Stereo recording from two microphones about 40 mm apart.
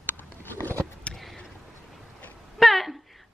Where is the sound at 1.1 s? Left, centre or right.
Left.